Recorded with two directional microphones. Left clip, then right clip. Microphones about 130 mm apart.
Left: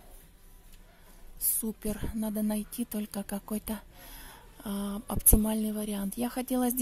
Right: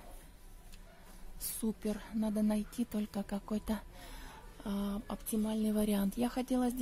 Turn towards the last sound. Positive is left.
turn(degrees=10)  # may be behind; listen again after turning